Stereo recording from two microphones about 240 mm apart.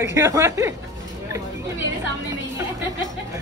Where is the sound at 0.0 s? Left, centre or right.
Centre.